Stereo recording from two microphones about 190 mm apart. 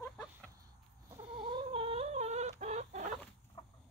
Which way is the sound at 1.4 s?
25° right (ahead or behind).